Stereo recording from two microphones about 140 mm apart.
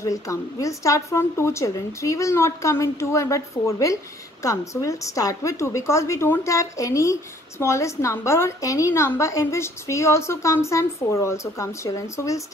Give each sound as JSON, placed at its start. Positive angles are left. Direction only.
{"t": 0.0, "sound": "a woman's voice", "side_deg": 25}